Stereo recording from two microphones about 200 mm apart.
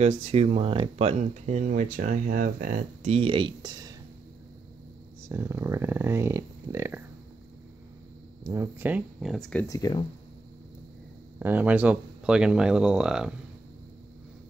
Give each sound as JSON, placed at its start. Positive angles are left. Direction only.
{"t": 0.0, "sound": "speech", "side_deg": -30}
{"t": 5.3, "sound": "speech", "side_deg": -15}
{"t": 8.5, "sound": "speech", "side_deg": -15}
{"t": 9.7, "sound": "speech", "side_deg": 20}
{"t": 11.3, "sound": "speech", "side_deg": -10}